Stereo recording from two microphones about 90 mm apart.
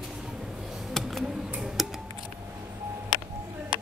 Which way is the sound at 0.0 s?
5° right (ahead or behind).